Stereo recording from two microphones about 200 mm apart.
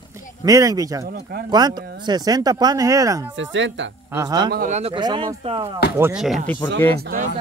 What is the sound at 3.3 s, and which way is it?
Speech, 65° right (ahead or behind).